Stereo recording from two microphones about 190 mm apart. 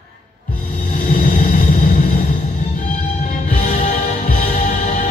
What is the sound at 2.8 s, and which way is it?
Music, 40° left (ahead or behind).